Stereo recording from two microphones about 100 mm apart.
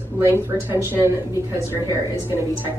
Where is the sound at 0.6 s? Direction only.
25° right (ahead or behind).